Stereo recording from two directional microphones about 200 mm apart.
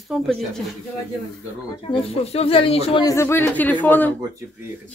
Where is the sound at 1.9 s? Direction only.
30° left (ahead or behind).